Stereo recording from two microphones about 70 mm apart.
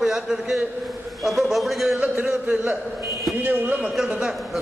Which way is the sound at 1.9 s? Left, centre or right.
Centre.